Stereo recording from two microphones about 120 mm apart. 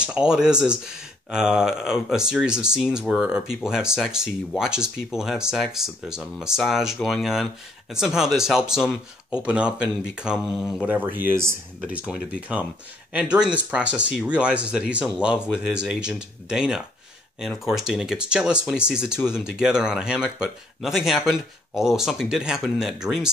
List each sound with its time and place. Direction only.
0.0 s speech: 10° right (ahead or behind)
19.1 s speech: 20° left (ahead or behind)
19.4 s speech: 5° right (ahead or behind)